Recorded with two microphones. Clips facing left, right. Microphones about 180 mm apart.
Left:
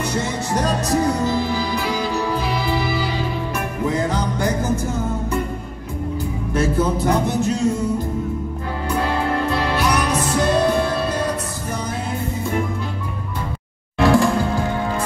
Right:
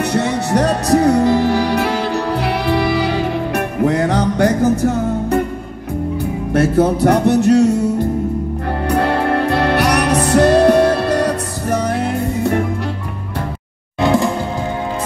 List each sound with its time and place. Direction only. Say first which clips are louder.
0.0 s music: right 6 dB; 65° right (ahead or behind)
6.5 s music: right 6 dB; 65° right (ahead or behind)
8.8 s music: right 5 dB; 65° right (ahead or behind)
13.9 s music: even; 20° right (ahead or behind)